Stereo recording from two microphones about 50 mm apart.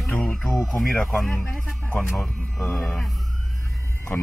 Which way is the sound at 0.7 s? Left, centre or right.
Centre.